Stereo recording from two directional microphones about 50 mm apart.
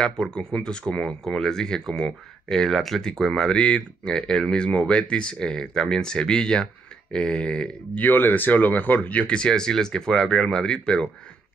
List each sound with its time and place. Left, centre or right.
0.0 s speech: centre
8.0 s speech: left
9.2 s speech: centre